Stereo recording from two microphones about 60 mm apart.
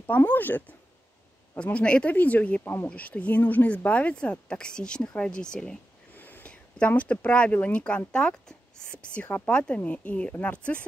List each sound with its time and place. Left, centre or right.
0.0 s speech: left; by 5.8 s centre
6.1 s whispering: left
6.9 s speech: left